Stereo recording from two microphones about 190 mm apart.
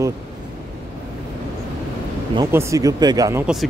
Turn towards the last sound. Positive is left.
turn(degrees=-15)  # may be behind; listen again after turning